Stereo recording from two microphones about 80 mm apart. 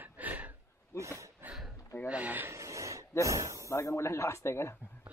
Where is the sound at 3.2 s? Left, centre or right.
Right.